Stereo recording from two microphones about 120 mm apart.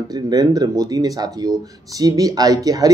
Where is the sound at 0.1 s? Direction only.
30° right (ahead or behind).